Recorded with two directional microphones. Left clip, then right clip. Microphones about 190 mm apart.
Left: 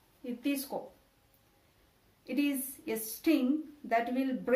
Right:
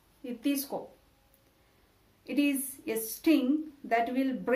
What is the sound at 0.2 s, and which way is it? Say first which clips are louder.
Speech: right 3 dB; 25° right (ahead or behind).